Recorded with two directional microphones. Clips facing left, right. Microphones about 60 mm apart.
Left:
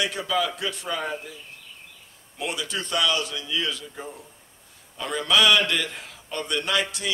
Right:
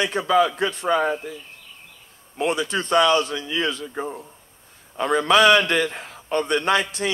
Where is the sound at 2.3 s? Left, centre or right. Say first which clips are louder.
Right 7 dB; right.